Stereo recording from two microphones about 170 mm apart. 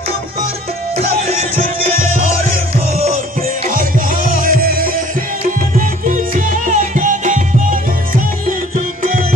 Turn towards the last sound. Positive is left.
turn(degrees=-50)  # may be behind; listen again after turning